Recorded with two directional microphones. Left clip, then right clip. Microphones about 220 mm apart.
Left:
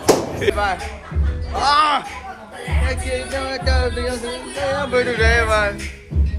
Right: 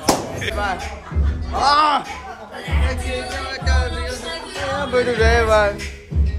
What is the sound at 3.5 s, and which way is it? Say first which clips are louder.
Music: left 3 dB; 10° left (ahead or behind).